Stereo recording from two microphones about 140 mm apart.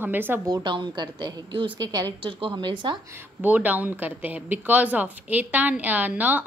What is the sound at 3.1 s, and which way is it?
A woman's voice, 15° right (ahead or behind).